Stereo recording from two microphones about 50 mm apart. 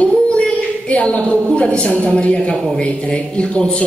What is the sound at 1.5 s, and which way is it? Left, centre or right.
A woman's voice, centre.